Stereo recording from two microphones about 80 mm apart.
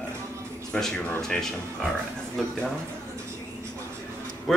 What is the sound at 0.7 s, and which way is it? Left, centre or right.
Speech, centre.